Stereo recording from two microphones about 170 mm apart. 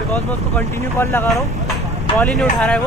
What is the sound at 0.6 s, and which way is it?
Speech, 15° left (ahead or behind).